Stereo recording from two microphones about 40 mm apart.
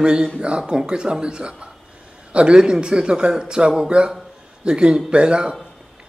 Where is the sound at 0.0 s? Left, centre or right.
Right.